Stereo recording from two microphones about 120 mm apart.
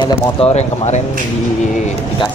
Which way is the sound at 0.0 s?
55° left (ahead or behind).